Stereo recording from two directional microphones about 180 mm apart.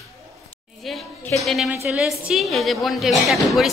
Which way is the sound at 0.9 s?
Centre (ahead or behind).